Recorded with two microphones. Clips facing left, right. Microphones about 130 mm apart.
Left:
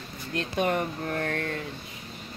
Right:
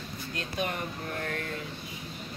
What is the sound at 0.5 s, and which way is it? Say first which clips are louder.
Speech: left 7 dB; 50° left (ahead or behind).